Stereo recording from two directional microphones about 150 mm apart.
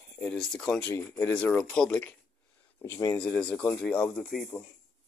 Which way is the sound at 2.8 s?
20° left (ahead or behind).